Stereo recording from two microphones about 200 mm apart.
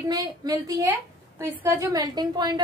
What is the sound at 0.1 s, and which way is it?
A woman's voice, 20° right (ahead or behind).